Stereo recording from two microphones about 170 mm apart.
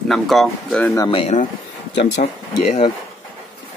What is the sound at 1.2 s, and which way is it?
Speech, 45° left (ahead or behind).